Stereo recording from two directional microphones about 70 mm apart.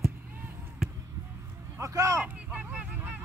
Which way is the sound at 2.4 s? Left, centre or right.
Centre.